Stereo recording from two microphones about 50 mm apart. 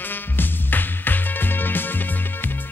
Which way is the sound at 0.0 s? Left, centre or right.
Left.